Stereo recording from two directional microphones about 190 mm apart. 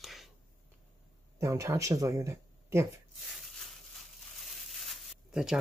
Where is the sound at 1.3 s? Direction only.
15° right (ahead or behind).